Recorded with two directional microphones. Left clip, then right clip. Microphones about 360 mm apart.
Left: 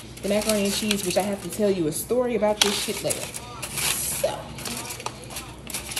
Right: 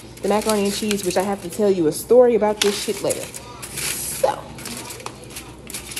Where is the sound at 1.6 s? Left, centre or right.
Centre.